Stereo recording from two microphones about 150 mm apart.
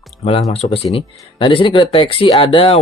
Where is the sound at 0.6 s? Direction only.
50° left (ahead or behind).